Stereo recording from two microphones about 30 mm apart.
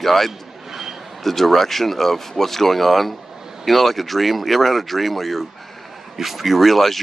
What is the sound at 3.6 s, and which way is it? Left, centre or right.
Speech, centre.